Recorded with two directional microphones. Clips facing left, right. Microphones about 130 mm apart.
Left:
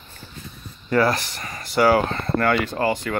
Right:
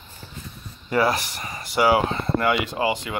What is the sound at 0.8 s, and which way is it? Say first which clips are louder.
Speech: left 2 dB; 15° right (ahead or behind).